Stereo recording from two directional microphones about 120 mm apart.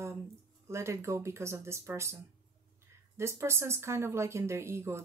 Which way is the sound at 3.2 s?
25° right (ahead or behind).